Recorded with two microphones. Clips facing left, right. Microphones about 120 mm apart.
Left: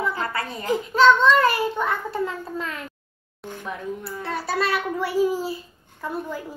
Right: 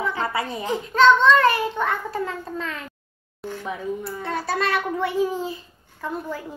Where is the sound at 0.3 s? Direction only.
20° right (ahead or behind).